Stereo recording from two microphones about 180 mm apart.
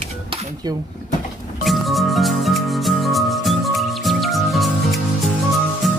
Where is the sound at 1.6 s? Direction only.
Centre (ahead or behind).